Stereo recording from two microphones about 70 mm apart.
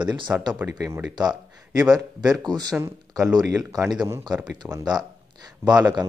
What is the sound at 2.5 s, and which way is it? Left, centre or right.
Speech, right.